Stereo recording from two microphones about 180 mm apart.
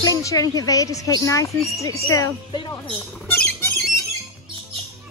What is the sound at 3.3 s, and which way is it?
Squawk, 10° left (ahead or behind).